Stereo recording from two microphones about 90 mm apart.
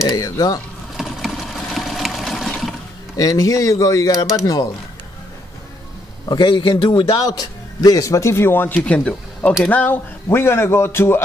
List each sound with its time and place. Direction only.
0.0 s speech: 45° left (ahead or behind)
0.9 s water: centre (ahead or behind)
3.2 s speech: 40° left (ahead or behind)
6.2 s a man's voice: 60° left (ahead or behind)
7.1 s speech: 45° left (ahead or behind); by 11.2 s 25° left (ahead or behind)